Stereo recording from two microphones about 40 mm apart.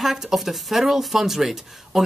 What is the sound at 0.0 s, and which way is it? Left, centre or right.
A woman's voice, centre.